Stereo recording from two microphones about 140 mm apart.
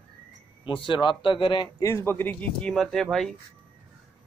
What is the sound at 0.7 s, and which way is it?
A man's voice, 35° left (ahead or behind).